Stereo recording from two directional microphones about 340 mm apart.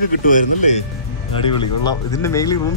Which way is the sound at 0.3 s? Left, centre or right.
Left.